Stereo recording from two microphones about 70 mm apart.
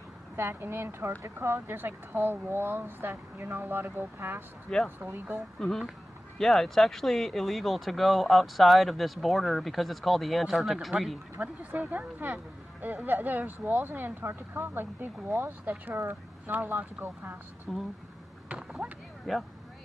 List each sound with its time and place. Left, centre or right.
0.4 s speech: right
4.7 s speech: centre
11.3 s speech: right
17.7 s speech: centre
18.5 s a sound: centre
19.3 s speech: centre